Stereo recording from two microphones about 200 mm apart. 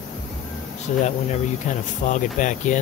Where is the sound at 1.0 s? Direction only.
35° left (ahead or behind).